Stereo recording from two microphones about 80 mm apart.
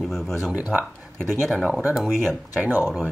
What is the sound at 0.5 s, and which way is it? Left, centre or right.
Speech, centre.